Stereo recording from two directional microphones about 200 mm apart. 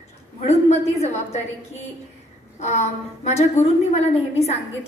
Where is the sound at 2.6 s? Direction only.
35° left (ahead or behind).